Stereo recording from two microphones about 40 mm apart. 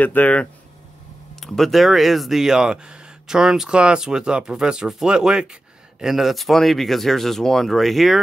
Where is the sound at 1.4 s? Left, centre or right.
Centre.